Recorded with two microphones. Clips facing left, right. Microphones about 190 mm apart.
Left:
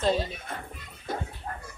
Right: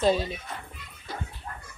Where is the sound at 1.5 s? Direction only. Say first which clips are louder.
Left 3 dB; 40° left (ahead or behind).